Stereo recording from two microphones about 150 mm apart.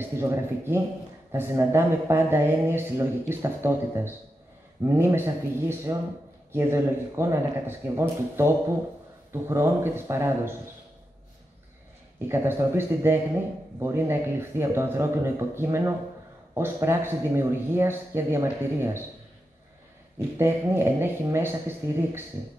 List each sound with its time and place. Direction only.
0.2 s speech: 15° right (ahead or behind)
12.3 s speech: 15° right (ahead or behind)
20.3 s speech: 15° right (ahead or behind)